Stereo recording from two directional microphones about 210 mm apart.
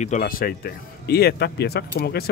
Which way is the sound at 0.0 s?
40° left (ahead or behind).